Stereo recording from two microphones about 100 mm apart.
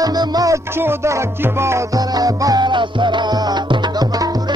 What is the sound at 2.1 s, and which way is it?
Music, 40° right (ahead or behind).